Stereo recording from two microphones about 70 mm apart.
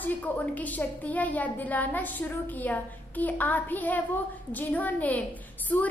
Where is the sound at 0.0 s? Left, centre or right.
Left.